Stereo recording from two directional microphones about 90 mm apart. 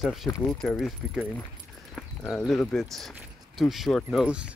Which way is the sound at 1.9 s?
5° left (ahead or behind).